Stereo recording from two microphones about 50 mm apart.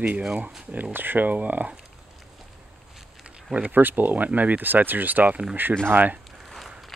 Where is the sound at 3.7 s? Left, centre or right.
Right.